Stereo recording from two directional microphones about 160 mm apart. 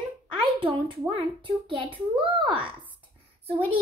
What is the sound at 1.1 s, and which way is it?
Speech, 30° right (ahead or behind).